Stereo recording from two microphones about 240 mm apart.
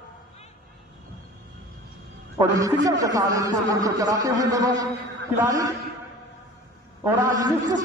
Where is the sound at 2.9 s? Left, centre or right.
Centre.